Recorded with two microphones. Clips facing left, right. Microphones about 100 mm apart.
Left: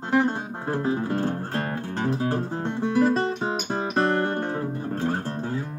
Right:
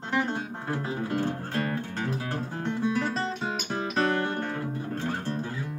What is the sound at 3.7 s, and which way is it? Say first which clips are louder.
Music: left 2 dB; 30° left (ahead or behind).